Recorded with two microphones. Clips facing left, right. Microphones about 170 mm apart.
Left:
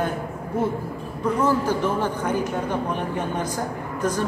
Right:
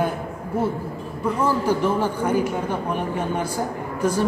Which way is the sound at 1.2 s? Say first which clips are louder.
Left 1 dB; 10° right (ahead or behind).